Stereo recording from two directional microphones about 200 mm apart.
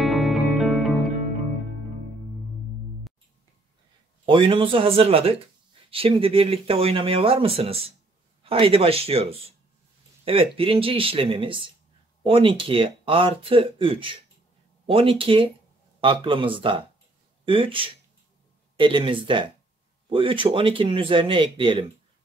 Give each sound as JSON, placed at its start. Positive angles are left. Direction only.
{"t": 0.0, "sound": "music", "side_deg": 0}
{"t": 4.3, "sound": "speech", "side_deg": -25}